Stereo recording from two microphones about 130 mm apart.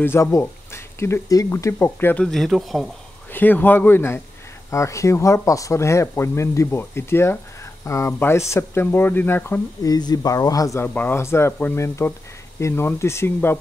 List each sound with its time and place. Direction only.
0.0 s speech: 20° left (ahead or behind)
2.2 s speech: centre (ahead or behind)
3.3 s speech: 15° left (ahead or behind)
9.8 s speech: 30° left (ahead or behind)
10.9 s speech: 15° left (ahead or behind)